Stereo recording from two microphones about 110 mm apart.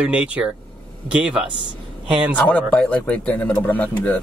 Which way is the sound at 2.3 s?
10° left (ahead or behind).